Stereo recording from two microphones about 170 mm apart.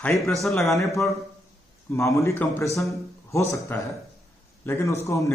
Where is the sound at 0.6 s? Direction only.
20° left (ahead or behind).